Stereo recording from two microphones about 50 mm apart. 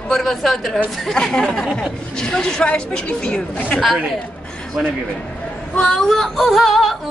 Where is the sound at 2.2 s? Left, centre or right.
Centre.